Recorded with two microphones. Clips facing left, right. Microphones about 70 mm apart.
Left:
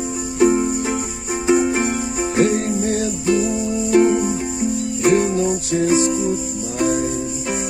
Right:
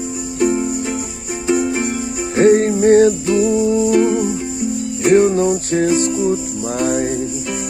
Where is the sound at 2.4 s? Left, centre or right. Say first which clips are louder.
Right 7 dB; right.